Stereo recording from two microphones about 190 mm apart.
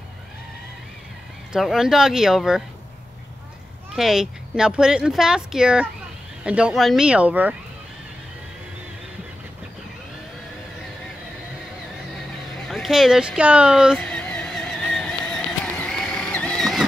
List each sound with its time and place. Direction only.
1.5 s speech: 5° right (ahead or behind)
3.9 s speech: centre (ahead or behind)
12.6 s speech: centre (ahead or behind)
13.9 s vehicle: 5° left (ahead or behind)